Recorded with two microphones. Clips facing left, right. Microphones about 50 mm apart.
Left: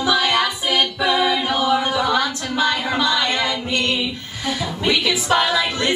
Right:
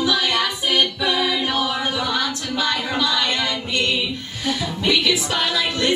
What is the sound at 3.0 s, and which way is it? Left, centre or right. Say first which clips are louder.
Music: even; left.